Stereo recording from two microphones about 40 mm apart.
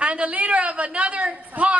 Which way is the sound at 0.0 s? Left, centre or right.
Right.